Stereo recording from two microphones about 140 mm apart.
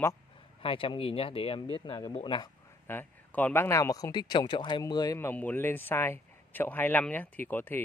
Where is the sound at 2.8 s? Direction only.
15° left (ahead or behind).